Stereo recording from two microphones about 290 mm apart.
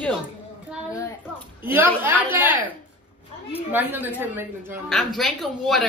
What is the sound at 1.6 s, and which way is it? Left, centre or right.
Speech, centre.